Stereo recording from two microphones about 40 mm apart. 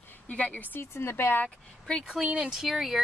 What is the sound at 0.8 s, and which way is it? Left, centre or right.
Speech, left.